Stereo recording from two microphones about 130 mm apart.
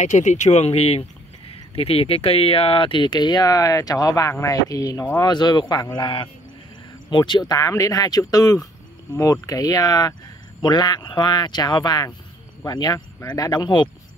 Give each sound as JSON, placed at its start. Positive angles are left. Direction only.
{"t": 0.0, "sound": "speech", "side_deg": 65}
{"t": 5.3, "sound": "speech", "side_deg": 35}